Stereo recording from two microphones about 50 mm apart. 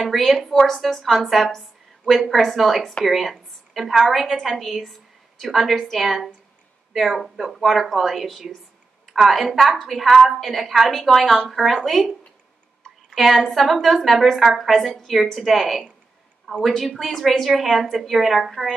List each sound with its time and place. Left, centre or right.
0.0 s a woman's voice: centre
16.6 s a woman's voice: centre